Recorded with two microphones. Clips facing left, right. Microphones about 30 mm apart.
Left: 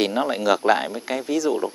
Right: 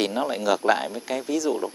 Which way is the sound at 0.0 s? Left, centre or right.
Centre.